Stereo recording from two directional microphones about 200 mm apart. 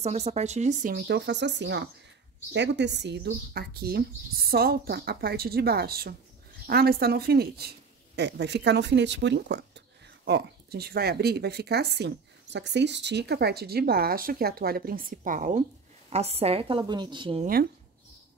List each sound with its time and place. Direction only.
0.0 s speech: 35° right (ahead or behind)
0.9 s a woman's voice: 55° right (ahead or behind); by 17.5 s 25° right (ahead or behind)